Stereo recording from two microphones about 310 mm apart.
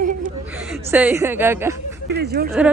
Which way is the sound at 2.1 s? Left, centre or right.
Right.